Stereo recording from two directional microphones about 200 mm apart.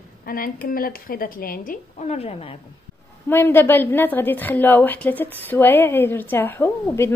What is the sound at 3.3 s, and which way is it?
A woman's voice, 10° left (ahead or behind).